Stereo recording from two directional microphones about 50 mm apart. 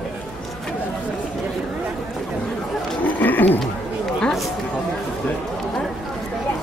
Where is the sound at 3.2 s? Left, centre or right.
Left.